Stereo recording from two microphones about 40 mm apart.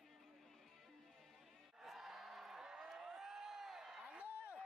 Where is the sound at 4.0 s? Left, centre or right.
Right.